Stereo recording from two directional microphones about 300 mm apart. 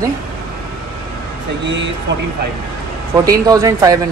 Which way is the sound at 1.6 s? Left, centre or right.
Right.